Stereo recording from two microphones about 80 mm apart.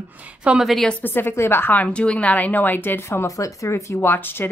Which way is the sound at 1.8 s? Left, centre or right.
Centre.